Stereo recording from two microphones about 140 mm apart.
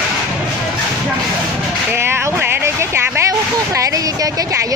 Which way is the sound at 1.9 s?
15° right (ahead or behind).